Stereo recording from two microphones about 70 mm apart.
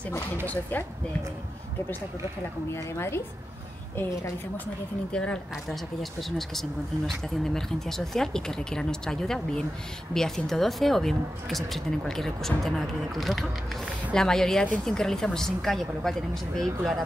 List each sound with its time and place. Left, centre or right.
0.5 s speech: left
2.7 s a woman's voice: left
5.1 s speech: centre